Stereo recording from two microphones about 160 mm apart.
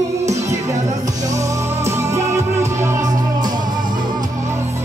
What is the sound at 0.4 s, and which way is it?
Music, 20° right (ahead or behind).